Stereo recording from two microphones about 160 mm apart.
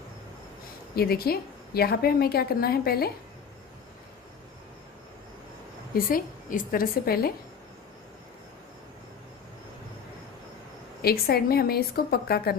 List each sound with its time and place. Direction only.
0.9 s a woman's voice: 75° left (ahead or behind)
5.9 s a woman's voice: 65° left (ahead or behind)
11.0 s a woman's voice: 75° left (ahead or behind)